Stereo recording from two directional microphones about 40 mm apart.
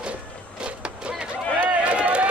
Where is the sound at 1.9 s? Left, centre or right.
Right.